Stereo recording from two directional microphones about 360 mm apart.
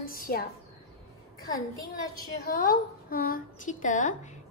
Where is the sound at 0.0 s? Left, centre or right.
Left.